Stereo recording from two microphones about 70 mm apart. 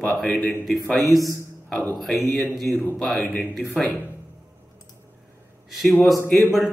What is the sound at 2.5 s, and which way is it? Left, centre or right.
A man's voice, centre.